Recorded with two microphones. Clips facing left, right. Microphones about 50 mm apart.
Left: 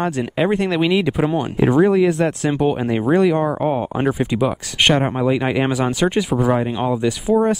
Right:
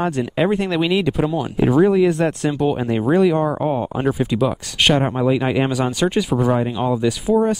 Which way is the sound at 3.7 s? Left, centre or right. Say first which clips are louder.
Left 1 dB; centre.